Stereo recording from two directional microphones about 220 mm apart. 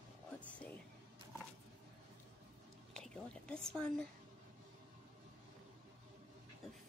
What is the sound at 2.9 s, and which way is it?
Speech, 5° left (ahead or behind).